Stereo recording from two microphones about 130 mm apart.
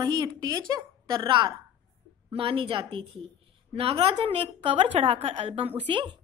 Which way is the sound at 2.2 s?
45° right (ahead or behind).